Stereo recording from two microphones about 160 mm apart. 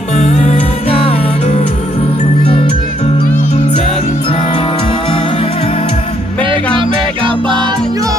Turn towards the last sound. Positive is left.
turn(degrees=-30)  # may be behind; listen again after turning